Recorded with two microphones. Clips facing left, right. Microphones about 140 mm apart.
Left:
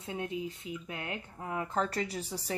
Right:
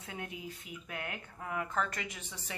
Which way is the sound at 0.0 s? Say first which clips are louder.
Left 7 dB; 25° left (ahead or behind).